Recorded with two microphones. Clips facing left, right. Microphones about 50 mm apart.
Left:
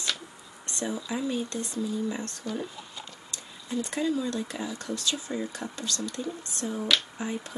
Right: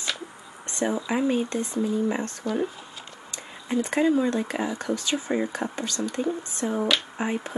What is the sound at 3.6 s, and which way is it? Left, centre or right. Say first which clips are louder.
Speech: right 6 dB; right.